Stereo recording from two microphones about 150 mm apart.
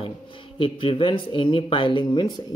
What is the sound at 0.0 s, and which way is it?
A man's voice, 35° left (ahead or behind).